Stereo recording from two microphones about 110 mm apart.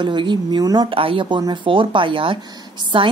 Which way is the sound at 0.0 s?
45° right (ahead or behind).